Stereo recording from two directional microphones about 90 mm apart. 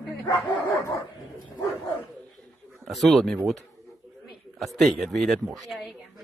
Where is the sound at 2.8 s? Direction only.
Centre (ahead or behind).